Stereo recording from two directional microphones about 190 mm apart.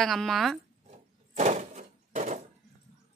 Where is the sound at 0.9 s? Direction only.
40° right (ahead or behind).